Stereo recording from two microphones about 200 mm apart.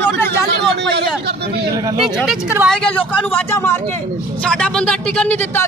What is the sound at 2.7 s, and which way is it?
A man's voice, 5° left (ahead or behind).